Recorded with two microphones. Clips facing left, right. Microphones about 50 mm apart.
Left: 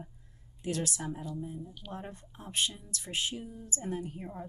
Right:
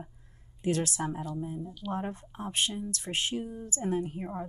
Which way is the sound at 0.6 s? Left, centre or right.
Right.